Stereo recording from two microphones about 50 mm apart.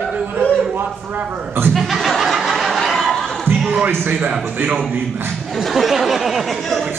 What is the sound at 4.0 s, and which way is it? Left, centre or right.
Speech, right.